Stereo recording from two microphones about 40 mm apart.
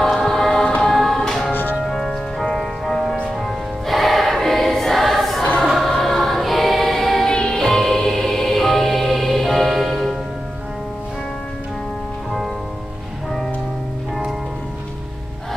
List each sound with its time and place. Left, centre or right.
0.0 s choir: centre
0.9 s music: centre
1.5 s music: left
1.9 s music: centre
3.8 s choir: centre
7.5 s music: centre